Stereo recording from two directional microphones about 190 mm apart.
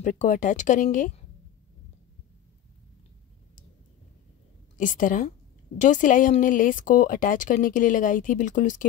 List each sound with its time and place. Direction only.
0.0 s speech: 40° left (ahead or behind)
4.7 s speech: 45° left (ahead or behind)